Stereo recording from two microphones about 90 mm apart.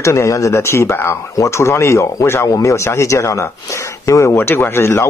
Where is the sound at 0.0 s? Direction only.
35° left (ahead or behind).